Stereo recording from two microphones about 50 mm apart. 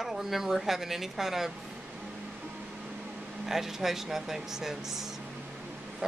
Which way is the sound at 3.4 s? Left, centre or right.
Centre.